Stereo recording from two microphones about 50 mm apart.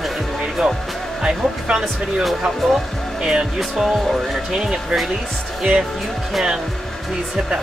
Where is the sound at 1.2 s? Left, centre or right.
Centre.